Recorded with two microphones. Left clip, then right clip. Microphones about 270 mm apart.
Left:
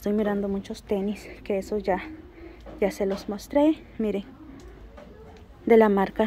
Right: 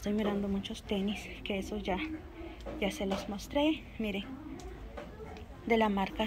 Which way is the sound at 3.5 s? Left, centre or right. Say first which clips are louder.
Left 9 dB; left.